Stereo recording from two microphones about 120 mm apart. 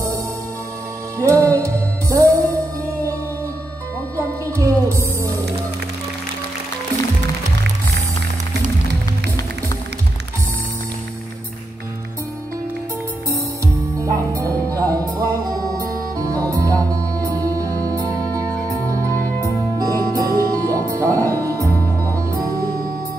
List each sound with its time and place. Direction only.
1.1 s music: 25° right (ahead or behind)
4.5 s music: 25° right (ahead or behind)
13.9 s music: 30° right (ahead or behind)